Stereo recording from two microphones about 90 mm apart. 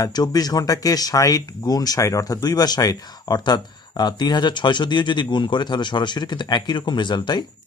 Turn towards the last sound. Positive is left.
turn(degrees=55)  # may be behind; listen again after turning